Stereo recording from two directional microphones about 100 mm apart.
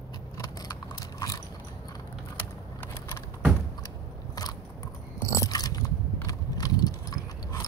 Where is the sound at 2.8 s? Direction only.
25° left (ahead or behind).